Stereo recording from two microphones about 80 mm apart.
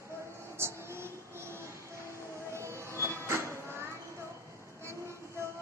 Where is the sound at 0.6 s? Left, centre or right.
Right.